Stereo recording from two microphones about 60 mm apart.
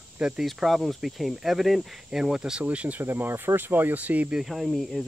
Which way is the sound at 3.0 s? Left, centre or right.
Right.